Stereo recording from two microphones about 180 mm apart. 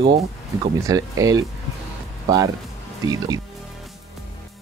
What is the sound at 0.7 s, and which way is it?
Speech, 20° right (ahead or behind).